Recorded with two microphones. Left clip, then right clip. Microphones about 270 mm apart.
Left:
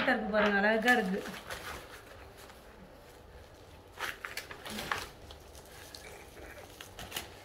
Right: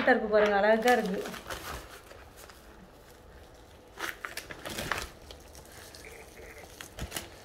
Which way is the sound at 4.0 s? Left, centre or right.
Right.